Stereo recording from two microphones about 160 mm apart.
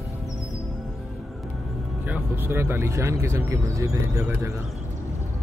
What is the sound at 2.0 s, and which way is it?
Speech, 15° right (ahead or behind).